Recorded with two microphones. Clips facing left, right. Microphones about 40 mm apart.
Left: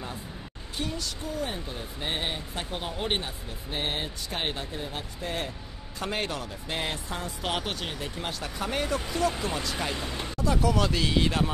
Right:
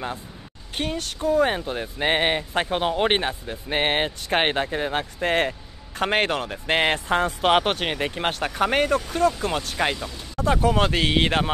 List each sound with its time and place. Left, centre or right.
0.7 s speech: right
9.9 s speech: left
10.3 s speech: right